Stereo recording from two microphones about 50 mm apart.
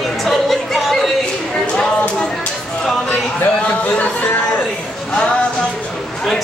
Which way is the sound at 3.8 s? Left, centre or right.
Left.